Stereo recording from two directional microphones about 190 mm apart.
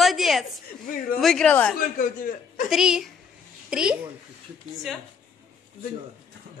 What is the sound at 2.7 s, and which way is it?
A woman's voice, centre (ahead or behind).